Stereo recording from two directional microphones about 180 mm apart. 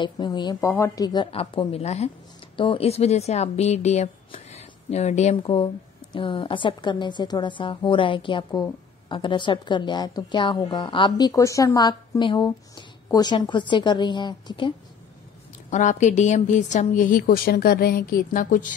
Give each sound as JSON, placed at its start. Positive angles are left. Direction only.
{"t": 0.0, "sound": "a woman's voice", "side_deg": 25}
{"t": 15.7, "sound": "a woman's voice", "side_deg": 45}